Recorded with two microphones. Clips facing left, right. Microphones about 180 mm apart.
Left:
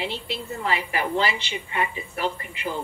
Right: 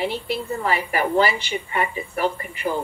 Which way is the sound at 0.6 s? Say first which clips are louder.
Right 2 dB; 45° right (ahead or behind).